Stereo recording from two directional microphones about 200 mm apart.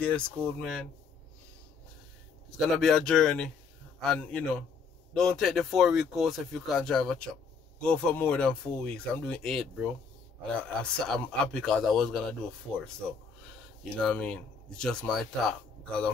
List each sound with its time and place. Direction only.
0.0 s speech: 5° left (ahead or behind)
2.5 s speech: centre (ahead or behind)
13.9 s speech: 5° left (ahead or behind)